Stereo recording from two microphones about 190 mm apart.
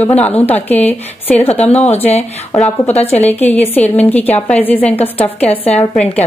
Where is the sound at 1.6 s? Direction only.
35° left (ahead or behind).